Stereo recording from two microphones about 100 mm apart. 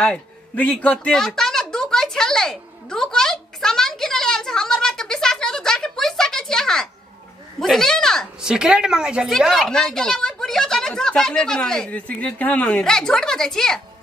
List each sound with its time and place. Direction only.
0.0 s a man's voice: 10° left (ahead or behind)
0.9 s a sound: 5° left (ahead or behind)
7.6 s speech: 5° left (ahead or behind)
8.4 s a woman's voice: 5° right (ahead or behind)